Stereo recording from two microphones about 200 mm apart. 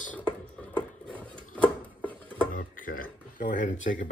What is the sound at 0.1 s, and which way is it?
Music, 5° left (ahead or behind).